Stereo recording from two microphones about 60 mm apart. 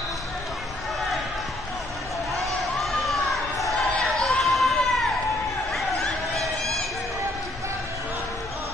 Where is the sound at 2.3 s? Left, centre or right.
Centre.